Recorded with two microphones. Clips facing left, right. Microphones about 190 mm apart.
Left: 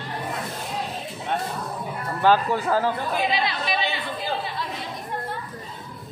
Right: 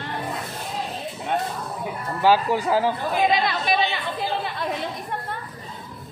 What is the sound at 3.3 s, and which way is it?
Speech, 50° right (ahead or behind).